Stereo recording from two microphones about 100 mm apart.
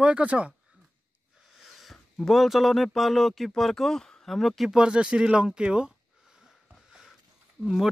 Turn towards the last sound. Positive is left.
turn(degrees=-5)  # may be behind; listen again after turning